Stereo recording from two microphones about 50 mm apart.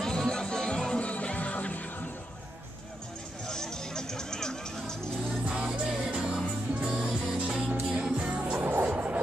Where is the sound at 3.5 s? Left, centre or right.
Centre.